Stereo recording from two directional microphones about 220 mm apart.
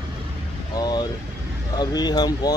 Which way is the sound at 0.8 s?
20° left (ahead or behind).